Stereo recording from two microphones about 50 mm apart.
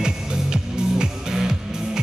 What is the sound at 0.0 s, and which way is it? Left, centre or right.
Music, centre.